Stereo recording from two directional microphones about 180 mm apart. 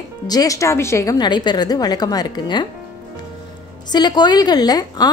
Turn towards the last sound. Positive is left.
turn(degrees=20)  # may be behind; listen again after turning